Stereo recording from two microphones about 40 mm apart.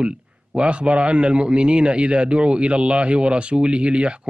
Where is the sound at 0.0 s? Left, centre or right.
Right.